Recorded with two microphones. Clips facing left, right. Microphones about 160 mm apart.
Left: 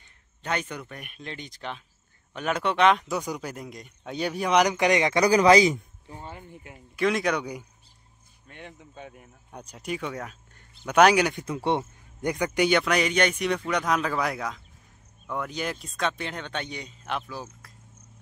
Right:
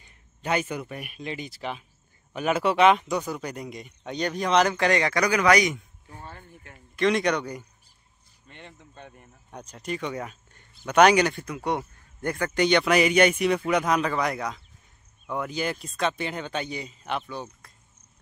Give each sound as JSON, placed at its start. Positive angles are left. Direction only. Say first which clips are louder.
{"t": 0.4, "sound": "speech", "louder": "right 4 dB", "side_deg": -5}
{"t": 5.2, "sound": "a man's voice", "louder": "left 5 dB", "side_deg": 30}
{"t": 6.1, "sound": "speech", "louder": "left 3 dB", "side_deg": 15}
{"t": 7.1, "sound": "speech", "louder": "right 2 dB", "side_deg": 5}
{"t": 11.4, "sound": "speech", "louder": "left 2 dB", "side_deg": 25}
{"t": 12.2, "sound": "speech", "louder": "even", "side_deg": 15}
{"t": 12.8, "sound": "speech", "louder": "right 4 dB", "side_deg": -5}